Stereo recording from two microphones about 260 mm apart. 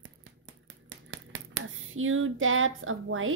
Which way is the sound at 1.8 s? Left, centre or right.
Right.